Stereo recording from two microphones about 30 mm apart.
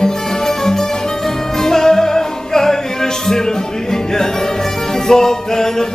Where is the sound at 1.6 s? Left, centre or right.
Centre.